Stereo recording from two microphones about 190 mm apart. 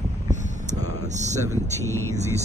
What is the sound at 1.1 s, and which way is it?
Speech, 40° right (ahead or behind).